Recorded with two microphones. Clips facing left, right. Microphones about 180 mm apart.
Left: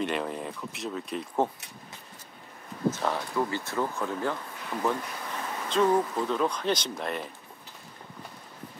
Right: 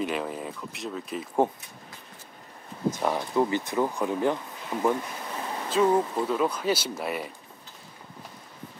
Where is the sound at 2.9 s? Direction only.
15° right (ahead or behind).